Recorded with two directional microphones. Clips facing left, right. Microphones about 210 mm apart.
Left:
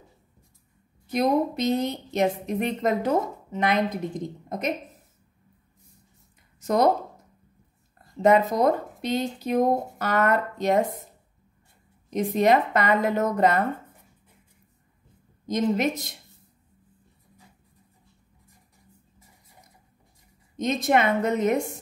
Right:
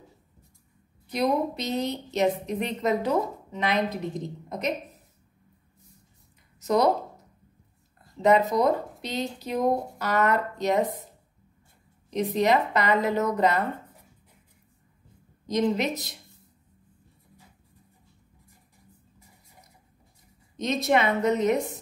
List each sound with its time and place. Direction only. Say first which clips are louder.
1.1 s a woman's voice: left 3 dB; 50° left (ahead or behind)
6.6 s speech: left 1 dB; 50° left (ahead or behind)
8.2 s speech: left 1 dB; 50° left (ahead or behind)
12.1 s speech: left 2 dB; 50° left (ahead or behind)
15.5 s speech: left 1 dB; 50° left (ahead or behind)
20.5 s speech: left 1 dB; 50° left (ahead or behind)